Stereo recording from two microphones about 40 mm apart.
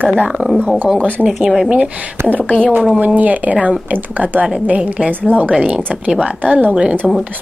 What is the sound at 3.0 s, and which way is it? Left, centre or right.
Speech, right.